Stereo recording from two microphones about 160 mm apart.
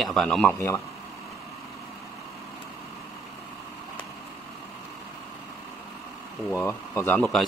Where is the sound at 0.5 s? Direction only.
15° left (ahead or behind).